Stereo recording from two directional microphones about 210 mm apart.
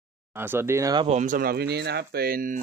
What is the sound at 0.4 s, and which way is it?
Speech, 10° right (ahead or behind).